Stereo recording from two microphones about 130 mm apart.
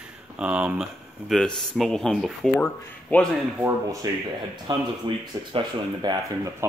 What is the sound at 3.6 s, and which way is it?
Speech, 25° right (ahead or behind).